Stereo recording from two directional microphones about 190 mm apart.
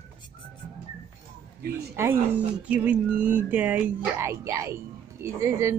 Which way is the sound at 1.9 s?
10° right (ahead or behind).